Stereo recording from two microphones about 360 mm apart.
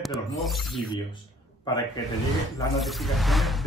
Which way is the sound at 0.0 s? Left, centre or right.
Centre.